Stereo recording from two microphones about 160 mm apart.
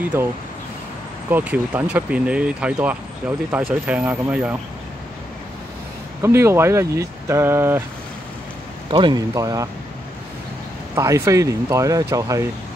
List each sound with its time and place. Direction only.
0.1 s speech: 15° right (ahead or behind)
1.3 s speech: 10° right (ahead or behind)
6.2 s speech: 15° right (ahead or behind)
8.9 s speech: 25° right (ahead or behind)
11.0 s speech: 20° right (ahead or behind)